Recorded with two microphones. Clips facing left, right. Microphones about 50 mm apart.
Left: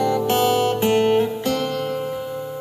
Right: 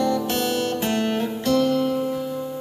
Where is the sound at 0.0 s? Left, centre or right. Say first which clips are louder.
Left 4 dB; centre; by 2.2 s left.